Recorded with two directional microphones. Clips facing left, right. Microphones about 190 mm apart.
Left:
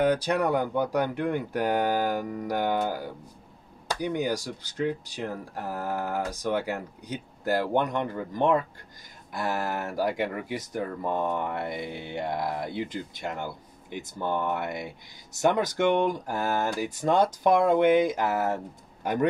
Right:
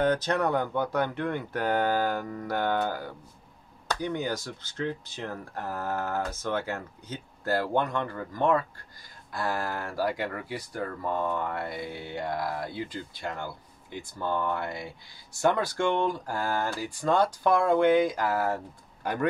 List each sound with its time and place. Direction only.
0.0 s speech: 10° left (ahead or behind)